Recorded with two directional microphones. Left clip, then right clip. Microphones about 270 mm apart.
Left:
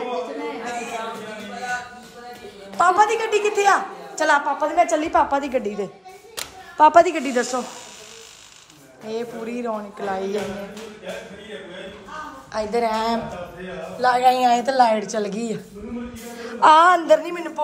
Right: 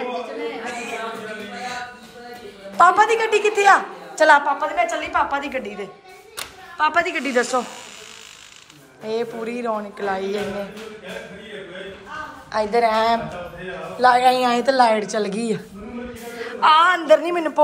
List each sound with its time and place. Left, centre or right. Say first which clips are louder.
0.7 s a sound: even; centre
2.8 s a woman's voice: right 3 dB; centre
9.0 s a woman's voice: right 4 dB; centre
12.5 s a woman's voice: right 4 dB; centre
16.3 s speech: left 1 dB; centre
17.2 s a man's voice: right 6 dB; centre